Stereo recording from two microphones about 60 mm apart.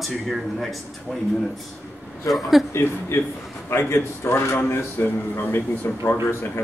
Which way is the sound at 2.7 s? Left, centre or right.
Left.